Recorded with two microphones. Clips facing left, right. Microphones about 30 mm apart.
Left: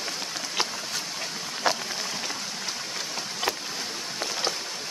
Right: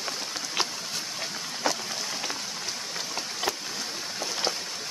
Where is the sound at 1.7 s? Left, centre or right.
Left.